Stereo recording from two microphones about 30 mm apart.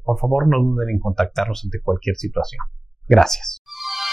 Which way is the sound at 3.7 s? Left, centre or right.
Centre.